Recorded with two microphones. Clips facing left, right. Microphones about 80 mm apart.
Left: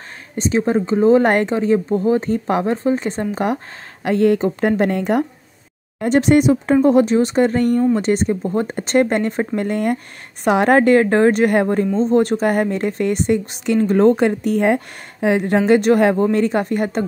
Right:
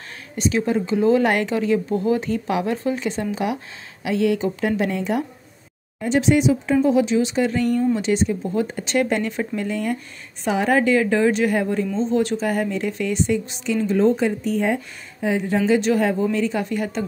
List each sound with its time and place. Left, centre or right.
0.4 s a woman's voice: left
9.7 s a woman's voice: left